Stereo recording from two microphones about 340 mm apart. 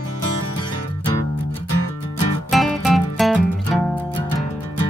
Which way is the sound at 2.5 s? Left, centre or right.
Centre.